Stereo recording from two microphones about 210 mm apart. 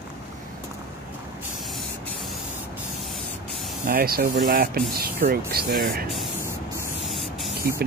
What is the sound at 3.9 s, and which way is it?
Speech, 45° right (ahead or behind).